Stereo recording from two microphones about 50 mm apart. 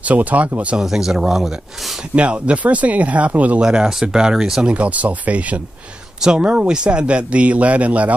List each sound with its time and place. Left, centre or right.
0.0 s speech: right
0.7 s speech: centre
2.1 s speech: right
3.6 s speech: centre
4.7 s speech: right